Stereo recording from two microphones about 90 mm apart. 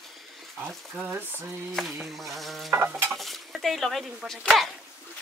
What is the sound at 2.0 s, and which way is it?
Speech, centre (ahead or behind).